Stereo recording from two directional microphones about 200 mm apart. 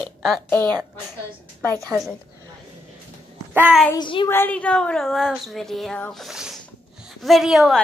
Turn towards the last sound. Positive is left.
turn(degrees=0)  # may be behind; listen again after turning